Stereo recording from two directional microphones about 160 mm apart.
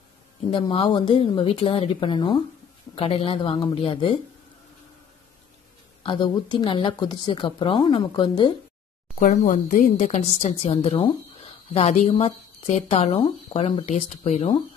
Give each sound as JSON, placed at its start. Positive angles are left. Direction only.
{"t": 0.5, "sound": "a woman's voice", "side_deg": 30}
{"t": 6.0, "sound": "a woman's voice", "side_deg": 30}
{"t": 9.2, "sound": "a woman's voice", "side_deg": 55}